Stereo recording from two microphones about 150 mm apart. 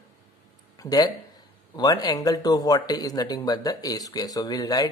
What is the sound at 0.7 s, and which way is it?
Speech, 25° left (ahead or behind).